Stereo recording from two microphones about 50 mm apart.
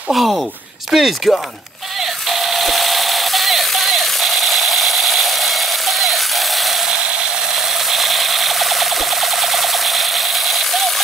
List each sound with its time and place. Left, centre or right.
0.1 s speech: centre
2.0 s a sound: centre
6.9 s ratchet: centre
7.5 s ratchet: centre